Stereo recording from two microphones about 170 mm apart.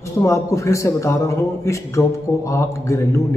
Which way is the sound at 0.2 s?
20° left (ahead or behind).